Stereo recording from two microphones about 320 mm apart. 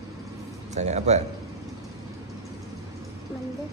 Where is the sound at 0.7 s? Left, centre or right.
Right.